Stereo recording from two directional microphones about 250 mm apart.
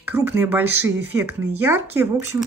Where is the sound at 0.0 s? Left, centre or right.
Centre.